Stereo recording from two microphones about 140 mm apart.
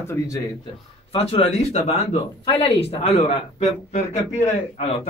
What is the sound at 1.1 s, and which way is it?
A man's voice, 45° left (ahead or behind).